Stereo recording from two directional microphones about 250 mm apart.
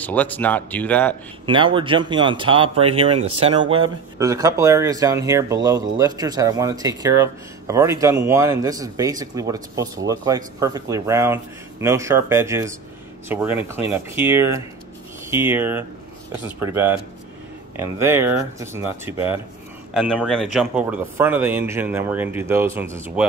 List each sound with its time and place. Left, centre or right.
0.0 s speech: centre
1.4 s speech: centre